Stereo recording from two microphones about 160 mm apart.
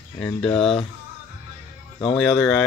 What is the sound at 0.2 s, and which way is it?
Speech, 10° left (ahead or behind).